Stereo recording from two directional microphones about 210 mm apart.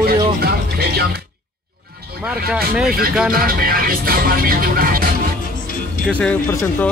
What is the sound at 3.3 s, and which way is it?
Music, 45° right (ahead or behind).